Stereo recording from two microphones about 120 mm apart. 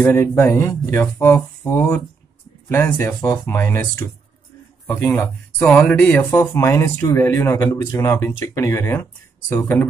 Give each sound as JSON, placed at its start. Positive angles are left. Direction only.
{"t": 0.0, "sound": "speech", "side_deg": 20}
{"t": 5.0, "sound": "speech", "side_deg": 10}